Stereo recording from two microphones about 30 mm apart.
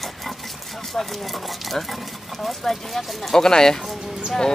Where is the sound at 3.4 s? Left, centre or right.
Left.